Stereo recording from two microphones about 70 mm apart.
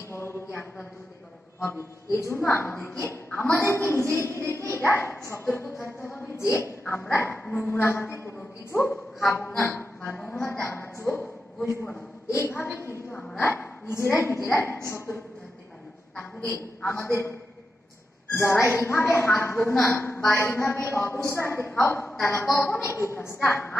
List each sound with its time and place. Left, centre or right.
0.1 s a sound: left
1.6 s a woman's voice: left
3.3 s a woman's voice: left
3.5 s a woman's voice: left
13.1 s a woman's voice: centre
13.4 s a woman's voice: left
17.0 s a woman's voice: left
18.3 s a woman's voice: left